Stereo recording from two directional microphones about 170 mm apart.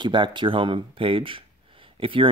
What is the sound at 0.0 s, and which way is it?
Speech, 30° right (ahead or behind).